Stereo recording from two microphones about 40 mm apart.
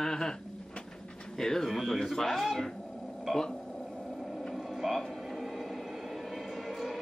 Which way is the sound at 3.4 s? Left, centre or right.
Centre.